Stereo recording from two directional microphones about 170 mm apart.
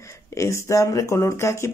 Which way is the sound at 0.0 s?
15° left (ahead or behind).